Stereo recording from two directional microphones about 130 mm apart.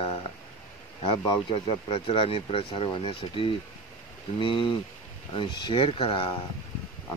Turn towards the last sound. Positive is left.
turn(degrees=45)  # may be behind; listen again after turning